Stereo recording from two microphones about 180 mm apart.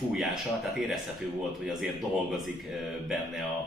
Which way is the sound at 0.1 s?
Centre (ahead or behind).